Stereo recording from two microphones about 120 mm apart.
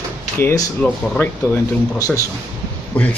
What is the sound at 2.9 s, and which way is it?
Speech, 10° left (ahead or behind).